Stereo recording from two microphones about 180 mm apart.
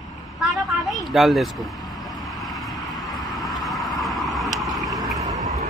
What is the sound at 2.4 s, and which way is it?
Vehicle, centre (ahead or behind).